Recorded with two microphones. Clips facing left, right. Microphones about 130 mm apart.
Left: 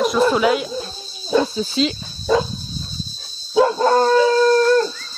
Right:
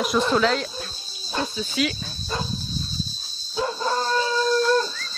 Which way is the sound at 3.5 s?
80° left.